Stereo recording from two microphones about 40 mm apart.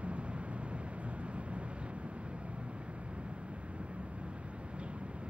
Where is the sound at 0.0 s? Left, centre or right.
Right.